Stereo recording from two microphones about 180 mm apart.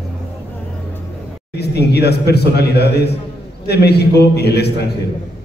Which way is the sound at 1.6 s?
65° left (ahead or behind).